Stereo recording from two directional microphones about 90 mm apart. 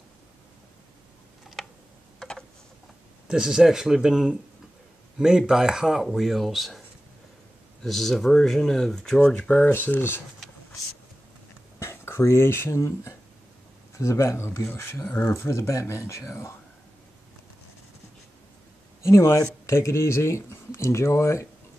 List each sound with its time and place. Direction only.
1.6 s tick: 5° left (ahead or behind)
3.3 s speech: 10° right (ahead or behind)
5.5 s speech: 5° right (ahead or behind)
7.8 s speech: centre (ahead or behind)
9.7 s speech: 20° left (ahead or behind)
11.8 s speech: 30° left (ahead or behind)
19.0 s speech: 35° left (ahead or behind)